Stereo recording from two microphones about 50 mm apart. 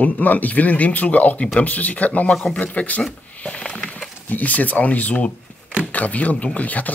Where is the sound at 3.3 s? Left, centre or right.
Left.